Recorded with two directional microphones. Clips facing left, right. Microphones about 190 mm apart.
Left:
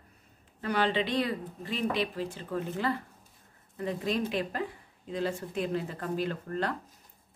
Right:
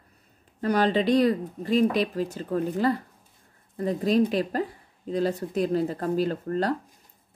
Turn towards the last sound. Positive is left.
turn(degrees=-35)  # may be behind; listen again after turning